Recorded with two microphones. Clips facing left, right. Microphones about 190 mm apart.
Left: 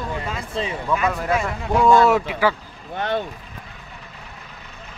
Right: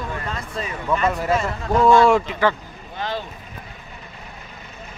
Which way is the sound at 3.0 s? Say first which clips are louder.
Left 4 dB; 60° left (ahead or behind).